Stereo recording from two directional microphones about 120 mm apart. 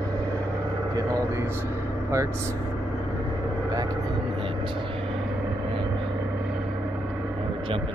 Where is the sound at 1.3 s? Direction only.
20° right (ahead or behind).